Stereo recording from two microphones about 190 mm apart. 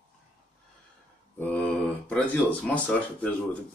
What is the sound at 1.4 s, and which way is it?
Speech, 5° left (ahead or behind).